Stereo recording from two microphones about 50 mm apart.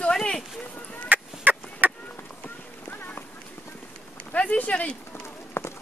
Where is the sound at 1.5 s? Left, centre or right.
Right.